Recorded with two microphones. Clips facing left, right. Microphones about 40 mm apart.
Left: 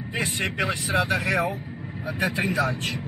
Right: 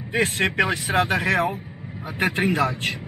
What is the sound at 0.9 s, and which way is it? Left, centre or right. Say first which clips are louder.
Speech: right 3 dB; right.